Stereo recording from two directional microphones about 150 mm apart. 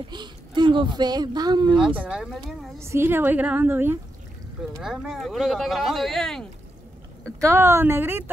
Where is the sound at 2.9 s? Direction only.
15° right (ahead or behind).